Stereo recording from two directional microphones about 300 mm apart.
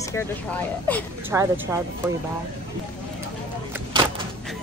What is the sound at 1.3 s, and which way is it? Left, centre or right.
Speech, centre.